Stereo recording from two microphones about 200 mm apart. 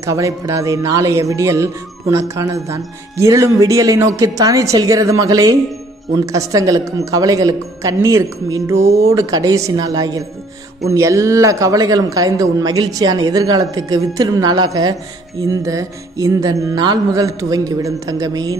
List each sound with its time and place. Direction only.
0.0 s a man's voice: 15° right (ahead or behind)